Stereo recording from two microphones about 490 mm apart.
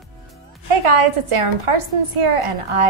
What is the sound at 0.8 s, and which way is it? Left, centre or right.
A woman's voice, right.